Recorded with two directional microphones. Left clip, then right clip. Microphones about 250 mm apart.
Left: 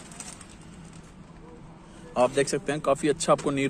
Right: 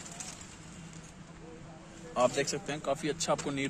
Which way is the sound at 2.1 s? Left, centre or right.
Centre.